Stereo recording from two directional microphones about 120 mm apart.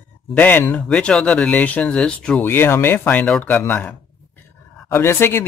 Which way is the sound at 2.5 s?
20° left (ahead or behind).